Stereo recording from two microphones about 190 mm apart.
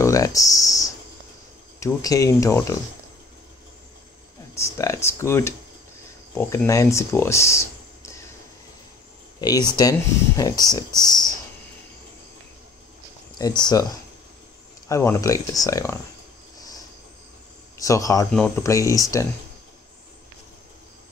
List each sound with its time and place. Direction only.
0.0 s a sound: 15° left (ahead or behind)
1.8 s speech: 15° left (ahead or behind)
4.6 s speech: 15° left (ahead or behind)
9.4 s speech: 20° left (ahead or behind)
13.4 s speech: 20° left (ahead or behind)
14.9 s speech: 15° left (ahead or behind)
17.7 s speech: 15° left (ahead or behind)